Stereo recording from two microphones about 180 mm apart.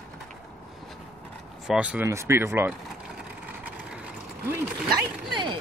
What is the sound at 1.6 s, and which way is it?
Speech, 5° right (ahead or behind).